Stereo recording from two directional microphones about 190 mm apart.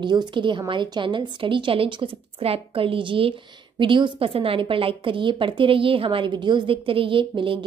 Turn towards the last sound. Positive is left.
turn(degrees=-25)  # may be behind; listen again after turning